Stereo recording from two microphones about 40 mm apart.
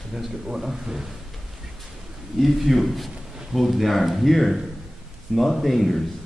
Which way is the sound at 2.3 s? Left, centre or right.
Centre.